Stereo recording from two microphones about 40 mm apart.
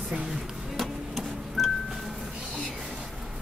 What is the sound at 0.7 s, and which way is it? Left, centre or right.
Music, centre.